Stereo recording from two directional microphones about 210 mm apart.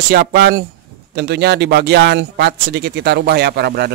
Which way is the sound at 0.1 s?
50° right (ahead or behind).